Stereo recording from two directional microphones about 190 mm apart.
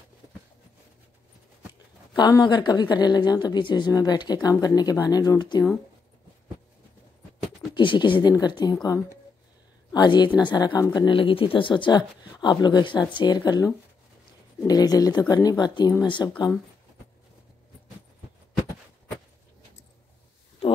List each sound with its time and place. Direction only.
2.1 s speech: 20° left (ahead or behind)
7.7 s speech: 25° left (ahead or behind)
9.9 s speech: 25° left (ahead or behind)